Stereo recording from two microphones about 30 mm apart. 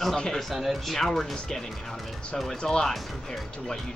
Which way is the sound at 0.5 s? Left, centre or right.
Centre.